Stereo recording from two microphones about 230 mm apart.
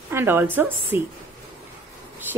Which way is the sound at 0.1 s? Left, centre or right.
Centre.